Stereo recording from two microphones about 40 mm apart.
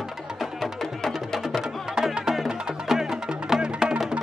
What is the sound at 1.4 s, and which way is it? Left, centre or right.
Music, centre.